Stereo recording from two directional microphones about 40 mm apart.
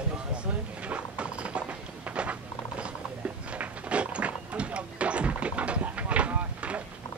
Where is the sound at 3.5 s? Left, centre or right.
Right.